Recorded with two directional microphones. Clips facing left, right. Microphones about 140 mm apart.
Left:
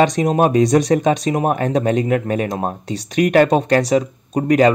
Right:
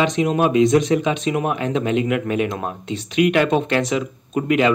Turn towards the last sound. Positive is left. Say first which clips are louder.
# left 4 dB
turn(degrees=40)  # may be behind; listen again after turning